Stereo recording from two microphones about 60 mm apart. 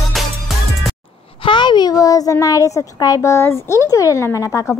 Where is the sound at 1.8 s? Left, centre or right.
Left.